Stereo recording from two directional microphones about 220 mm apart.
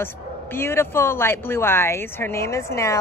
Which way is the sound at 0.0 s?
10° left (ahead or behind).